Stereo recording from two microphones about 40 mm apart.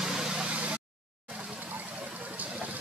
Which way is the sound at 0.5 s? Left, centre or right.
Right.